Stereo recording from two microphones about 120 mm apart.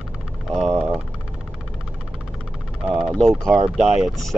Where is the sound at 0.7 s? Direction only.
15° right (ahead or behind).